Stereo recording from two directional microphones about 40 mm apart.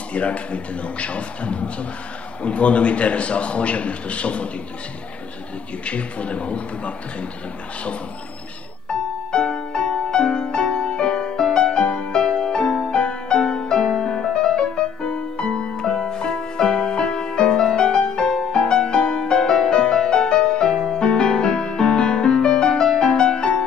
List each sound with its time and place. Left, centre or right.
0.1 s a man's voice: left
5.9 s a man's voice: left
8.8 s music: left